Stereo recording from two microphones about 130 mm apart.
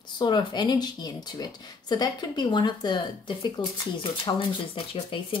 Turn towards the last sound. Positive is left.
turn(degrees=40)  # may be behind; listen again after turning